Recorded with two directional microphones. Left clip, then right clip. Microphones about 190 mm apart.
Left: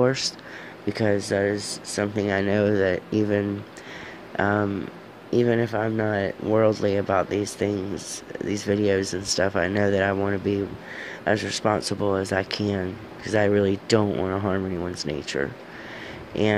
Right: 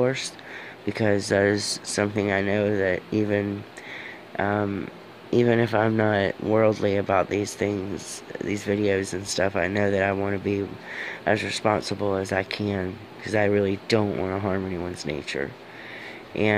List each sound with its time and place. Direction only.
0.8 s speech: 5° left (ahead or behind)